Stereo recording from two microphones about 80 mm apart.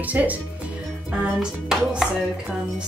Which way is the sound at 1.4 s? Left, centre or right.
Centre.